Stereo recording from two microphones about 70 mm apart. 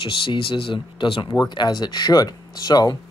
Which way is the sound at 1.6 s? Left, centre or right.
Left.